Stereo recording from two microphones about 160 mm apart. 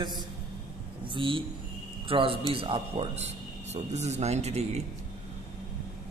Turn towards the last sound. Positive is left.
turn(degrees=-45)  # may be behind; listen again after turning